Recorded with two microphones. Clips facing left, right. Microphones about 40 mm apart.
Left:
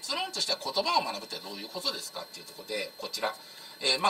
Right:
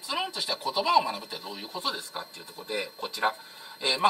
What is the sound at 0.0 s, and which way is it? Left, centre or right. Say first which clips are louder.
Speech: right 2 dB; centre.